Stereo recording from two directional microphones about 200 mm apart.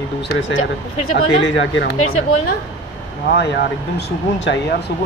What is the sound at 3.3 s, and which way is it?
Speech, 55° left (ahead or behind).